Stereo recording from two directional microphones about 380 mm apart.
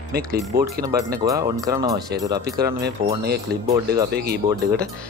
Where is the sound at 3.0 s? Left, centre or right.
Right.